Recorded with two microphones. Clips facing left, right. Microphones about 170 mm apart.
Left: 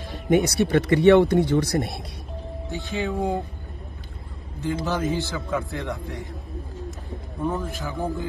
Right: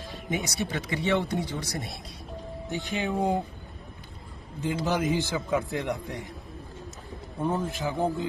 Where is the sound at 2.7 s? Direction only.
15° right (ahead or behind).